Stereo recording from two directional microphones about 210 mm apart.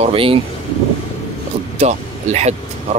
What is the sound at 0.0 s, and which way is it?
Speech, 25° right (ahead or behind).